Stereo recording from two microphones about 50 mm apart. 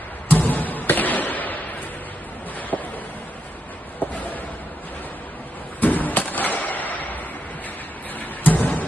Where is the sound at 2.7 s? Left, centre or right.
Left.